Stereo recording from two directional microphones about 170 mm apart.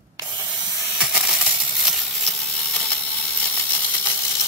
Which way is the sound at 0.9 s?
5° right (ahead or behind).